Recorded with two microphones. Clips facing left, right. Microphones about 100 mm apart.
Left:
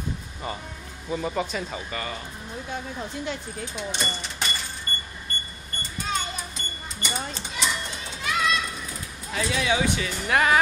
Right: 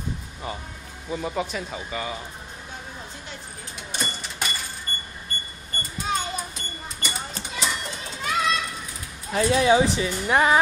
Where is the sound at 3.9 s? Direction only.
5° right (ahead or behind).